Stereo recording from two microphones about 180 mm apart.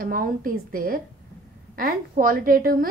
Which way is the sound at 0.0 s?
50° right (ahead or behind).